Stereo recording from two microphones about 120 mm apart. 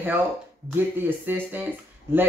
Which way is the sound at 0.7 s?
15° right (ahead or behind).